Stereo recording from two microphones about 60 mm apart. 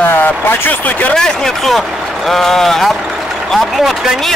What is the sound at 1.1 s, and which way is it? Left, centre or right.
Speech, centre.